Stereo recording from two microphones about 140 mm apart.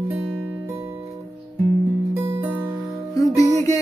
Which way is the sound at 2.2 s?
15° right (ahead or behind).